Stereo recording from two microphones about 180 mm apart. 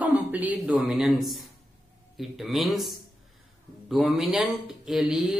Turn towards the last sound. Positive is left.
turn(degrees=-5)  # may be behind; listen again after turning